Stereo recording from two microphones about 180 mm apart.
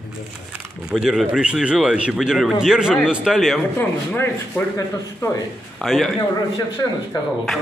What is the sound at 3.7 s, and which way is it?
Speech, 10° left (ahead or behind).